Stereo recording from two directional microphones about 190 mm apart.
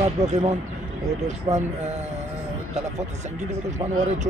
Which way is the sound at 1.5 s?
30° right (ahead or behind).